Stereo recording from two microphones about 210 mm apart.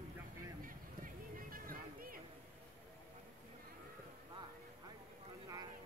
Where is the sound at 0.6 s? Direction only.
40° right (ahead or behind).